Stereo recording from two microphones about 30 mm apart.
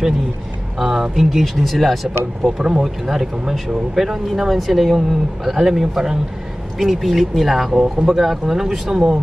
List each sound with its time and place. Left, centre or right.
0.7 s speech: centre
2.4 s speech: centre